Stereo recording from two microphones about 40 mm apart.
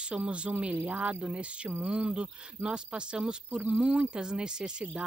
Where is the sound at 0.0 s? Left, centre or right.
Right.